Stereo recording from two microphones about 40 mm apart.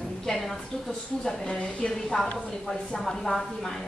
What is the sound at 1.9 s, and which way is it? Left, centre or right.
A woman's voice, centre.